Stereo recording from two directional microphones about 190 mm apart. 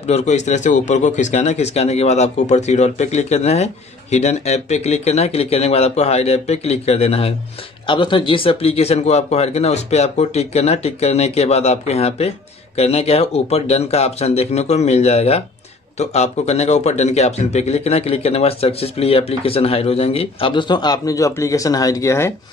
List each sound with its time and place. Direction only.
0.0 s speech: 35° left (ahead or behind); by 22.3 s 15° left (ahead or behind)